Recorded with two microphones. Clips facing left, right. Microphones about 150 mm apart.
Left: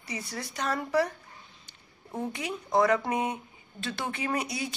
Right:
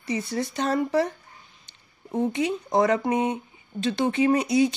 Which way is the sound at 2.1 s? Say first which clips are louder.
Right 9 dB; 20° right (ahead or behind).